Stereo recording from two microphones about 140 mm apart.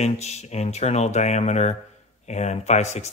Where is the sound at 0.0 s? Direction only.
50° left (ahead or behind).